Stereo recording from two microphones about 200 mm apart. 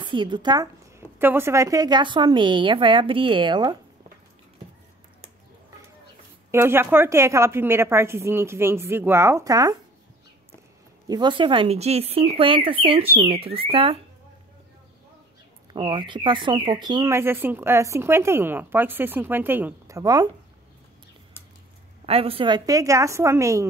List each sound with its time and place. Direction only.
0.0 s a woman's voice: 25° right (ahead or behind)
6.5 s speech: 10° right (ahead or behind)
11.1 s a woman's voice: 20° right (ahead or behind)
15.7 s speech: 25° right (ahead or behind)
22.0 s speech: 30° right (ahead or behind)